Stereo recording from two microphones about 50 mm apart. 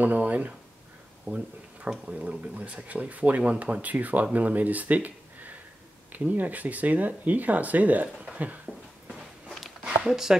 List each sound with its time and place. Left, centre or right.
0.0 s speech: right
9.1 s walk: centre
9.8 s a sound: centre